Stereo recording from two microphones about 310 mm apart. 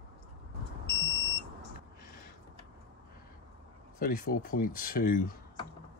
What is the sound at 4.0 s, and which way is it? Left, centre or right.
Speech, left.